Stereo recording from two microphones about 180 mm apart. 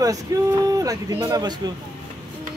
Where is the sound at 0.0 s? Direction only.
20° right (ahead or behind).